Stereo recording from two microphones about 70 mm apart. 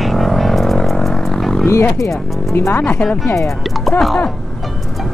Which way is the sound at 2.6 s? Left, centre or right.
Left.